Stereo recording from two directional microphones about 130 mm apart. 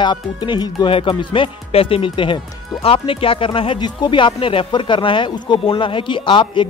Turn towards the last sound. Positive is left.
turn(degrees=40)  # may be behind; listen again after turning